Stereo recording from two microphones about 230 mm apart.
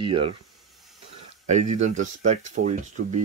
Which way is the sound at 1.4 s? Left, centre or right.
Right.